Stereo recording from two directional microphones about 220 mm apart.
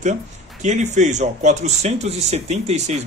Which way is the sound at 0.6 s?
30° right (ahead or behind).